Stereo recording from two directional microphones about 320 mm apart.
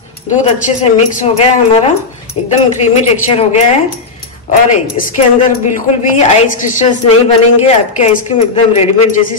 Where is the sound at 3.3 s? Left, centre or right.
Centre.